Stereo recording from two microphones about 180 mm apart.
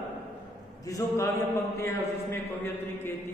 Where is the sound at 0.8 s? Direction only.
20° left (ahead or behind).